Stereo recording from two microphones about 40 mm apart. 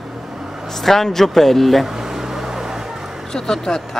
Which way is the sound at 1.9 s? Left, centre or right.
Centre.